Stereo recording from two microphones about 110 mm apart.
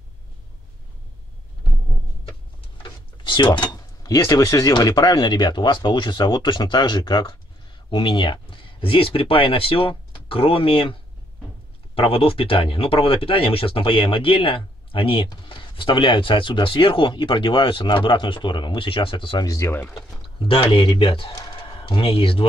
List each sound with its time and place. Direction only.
2.8 s a sound: 45° left (ahead or behind)
4.7 s speech: 35° left (ahead or behind)
19.4 s speech: 30° left (ahead or behind)
19.7 s speech: 20° left (ahead or behind)
20.3 s speech: 60° left (ahead or behind)